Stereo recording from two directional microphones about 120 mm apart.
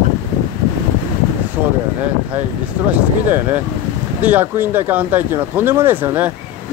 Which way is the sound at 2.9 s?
15° right (ahead or behind).